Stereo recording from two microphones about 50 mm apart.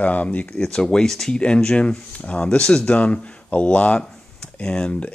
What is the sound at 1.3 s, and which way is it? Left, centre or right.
Speech, centre.